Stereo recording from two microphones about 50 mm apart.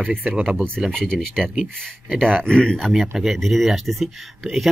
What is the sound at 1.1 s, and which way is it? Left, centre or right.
Speech, centre.